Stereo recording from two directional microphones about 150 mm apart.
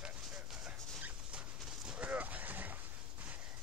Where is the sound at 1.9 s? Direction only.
10° right (ahead or behind).